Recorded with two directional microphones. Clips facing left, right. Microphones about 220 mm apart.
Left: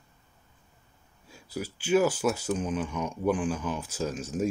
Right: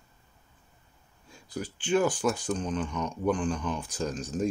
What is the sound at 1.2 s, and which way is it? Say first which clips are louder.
Speech: left 1 dB; 5° left (ahead or behind).